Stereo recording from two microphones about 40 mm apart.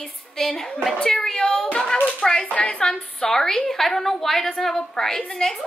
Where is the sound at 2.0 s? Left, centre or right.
Left.